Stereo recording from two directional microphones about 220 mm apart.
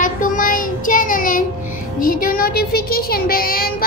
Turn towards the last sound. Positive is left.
turn(degrees=40)  # may be behind; listen again after turning